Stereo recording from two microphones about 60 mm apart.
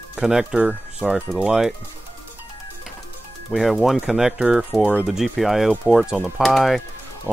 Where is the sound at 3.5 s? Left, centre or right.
Centre.